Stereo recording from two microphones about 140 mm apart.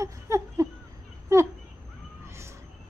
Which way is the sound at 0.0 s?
20° right (ahead or behind).